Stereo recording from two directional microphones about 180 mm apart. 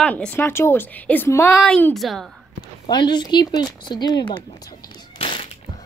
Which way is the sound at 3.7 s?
25° left (ahead or behind).